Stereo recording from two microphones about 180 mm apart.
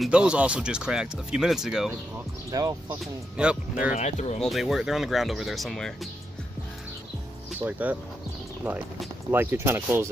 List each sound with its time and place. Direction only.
0.0 s speech: 5° right (ahead or behind)
2.5 s speech: 20° right (ahead or behind)
3.0 s speech: 5° right (ahead or behind)
3.9 s speech: 40° left (ahead or behind)
4.4 s speech: centre (ahead or behind)
7.5 s speech: 10° right (ahead or behind)
9.3 s speech: 10° right (ahead or behind)